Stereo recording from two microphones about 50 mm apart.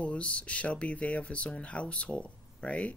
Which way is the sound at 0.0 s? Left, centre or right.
Left.